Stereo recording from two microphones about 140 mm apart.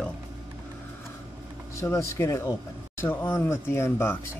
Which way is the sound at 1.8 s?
20° left (ahead or behind).